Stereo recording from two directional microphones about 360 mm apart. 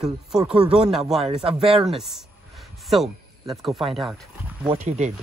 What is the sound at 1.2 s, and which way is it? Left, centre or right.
Speech, centre.